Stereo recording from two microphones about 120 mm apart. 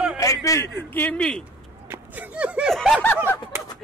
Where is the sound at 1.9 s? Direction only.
10° right (ahead or behind).